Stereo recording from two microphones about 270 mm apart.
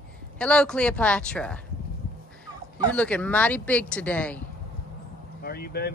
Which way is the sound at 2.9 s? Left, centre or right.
Centre.